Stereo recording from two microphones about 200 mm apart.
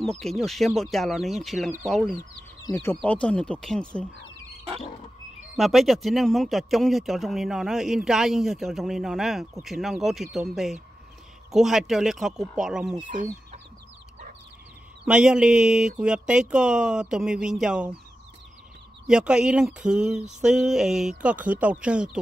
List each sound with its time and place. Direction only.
0.0 s speech: centre (ahead or behind)
2.6 s speech: 10° left (ahead or behind)
5.6 s speech: centre (ahead or behind)
13.0 s speech: 40° right (ahead or behind)
15.0 s speech: 5° right (ahead or behind)
19.0 s speech: 5° right (ahead or behind)